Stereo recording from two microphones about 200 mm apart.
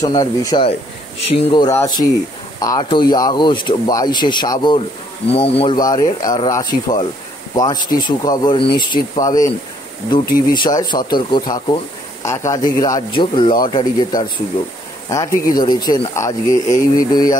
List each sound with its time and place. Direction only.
0.0 s a man's voice: 15° left (ahead or behind)